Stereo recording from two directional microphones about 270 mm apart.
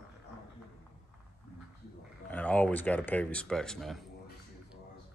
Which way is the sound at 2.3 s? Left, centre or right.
Centre.